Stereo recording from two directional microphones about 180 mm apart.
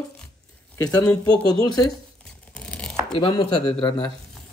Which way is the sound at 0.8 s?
20° left (ahead or behind).